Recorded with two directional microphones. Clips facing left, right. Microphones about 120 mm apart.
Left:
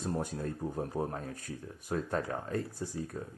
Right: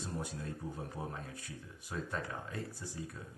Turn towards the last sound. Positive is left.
turn(degrees=45)  # may be behind; listen again after turning